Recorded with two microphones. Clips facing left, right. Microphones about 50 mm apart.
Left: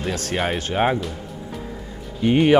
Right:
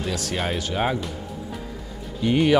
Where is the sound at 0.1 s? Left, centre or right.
Left.